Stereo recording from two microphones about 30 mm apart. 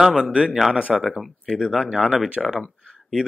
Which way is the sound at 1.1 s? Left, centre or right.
Centre.